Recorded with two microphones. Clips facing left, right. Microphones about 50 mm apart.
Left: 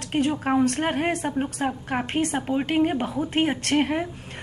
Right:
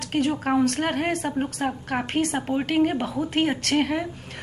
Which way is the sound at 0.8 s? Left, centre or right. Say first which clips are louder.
Even; centre.